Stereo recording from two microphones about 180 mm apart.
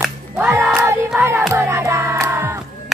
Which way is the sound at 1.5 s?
15° right (ahead or behind).